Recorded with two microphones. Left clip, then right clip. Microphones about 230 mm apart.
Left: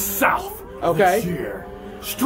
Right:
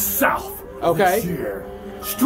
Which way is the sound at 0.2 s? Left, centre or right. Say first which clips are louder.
Left 1 dB; centre.